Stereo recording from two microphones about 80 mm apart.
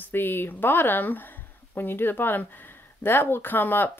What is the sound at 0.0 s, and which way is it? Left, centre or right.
Speech, left.